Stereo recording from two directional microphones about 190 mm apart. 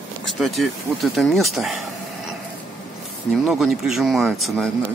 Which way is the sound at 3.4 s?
Centre (ahead or behind).